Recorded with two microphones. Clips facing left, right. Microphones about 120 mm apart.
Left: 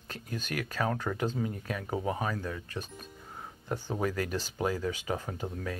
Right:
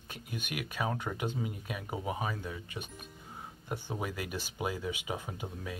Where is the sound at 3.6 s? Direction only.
20° right (ahead or behind).